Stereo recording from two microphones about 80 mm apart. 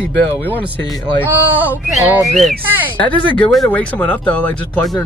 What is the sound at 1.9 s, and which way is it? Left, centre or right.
Whistling, centre.